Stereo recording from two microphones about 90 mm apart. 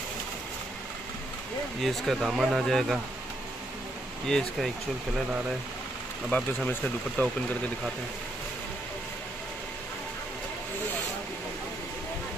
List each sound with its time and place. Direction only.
1.8 s speech: centre (ahead or behind)
4.3 s speech: 5° left (ahead or behind)
6.3 s speech: 15° left (ahead or behind)